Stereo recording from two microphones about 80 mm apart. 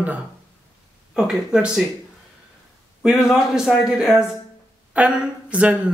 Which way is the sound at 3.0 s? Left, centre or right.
Centre.